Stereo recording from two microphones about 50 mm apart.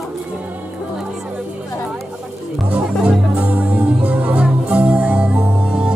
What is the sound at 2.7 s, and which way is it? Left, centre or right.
Music, right.